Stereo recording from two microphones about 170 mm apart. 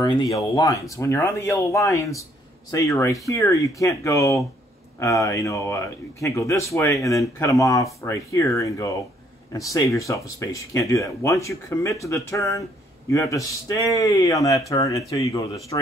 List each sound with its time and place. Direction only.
0.0 s speech: 25° left (ahead or behind)